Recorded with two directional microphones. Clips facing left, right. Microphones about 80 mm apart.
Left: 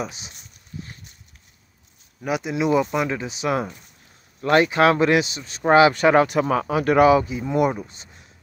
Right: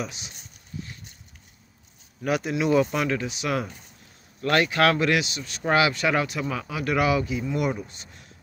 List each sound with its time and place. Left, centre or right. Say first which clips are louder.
0.0 s speech: left 3 dB; left
0.7 s a sound: even; left
2.2 s speech: left 1 dB; centre